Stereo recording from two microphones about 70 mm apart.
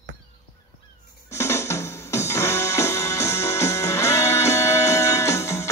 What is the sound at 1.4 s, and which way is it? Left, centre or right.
Music, left.